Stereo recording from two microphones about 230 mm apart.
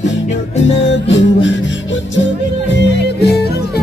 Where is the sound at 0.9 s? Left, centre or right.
Left.